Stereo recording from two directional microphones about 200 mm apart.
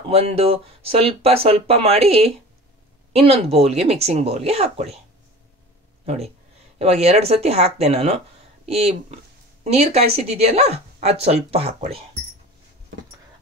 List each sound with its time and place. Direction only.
0.1 s speech: 30° right (ahead or behind)
6.0 s speech: 30° right (ahead or behind)